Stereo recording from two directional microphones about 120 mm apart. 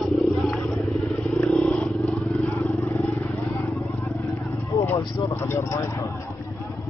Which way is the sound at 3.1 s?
20° left (ahead or behind).